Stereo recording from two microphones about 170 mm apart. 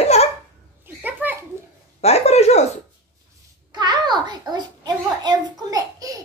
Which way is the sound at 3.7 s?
25° right (ahead or behind).